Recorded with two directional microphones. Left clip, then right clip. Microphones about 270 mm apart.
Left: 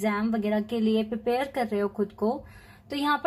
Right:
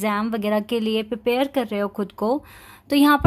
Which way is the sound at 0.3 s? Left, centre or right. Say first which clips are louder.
Right 6 dB; right.